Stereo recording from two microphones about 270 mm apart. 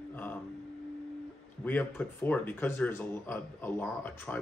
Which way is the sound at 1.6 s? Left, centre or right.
Centre.